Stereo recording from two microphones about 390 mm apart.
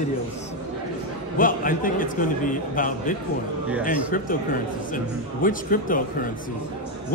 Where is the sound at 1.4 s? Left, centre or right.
Left.